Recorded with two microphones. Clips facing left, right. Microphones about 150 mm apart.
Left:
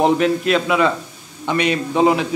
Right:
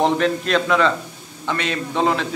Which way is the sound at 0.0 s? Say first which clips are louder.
Left 3 dB; 5° left (ahead or behind).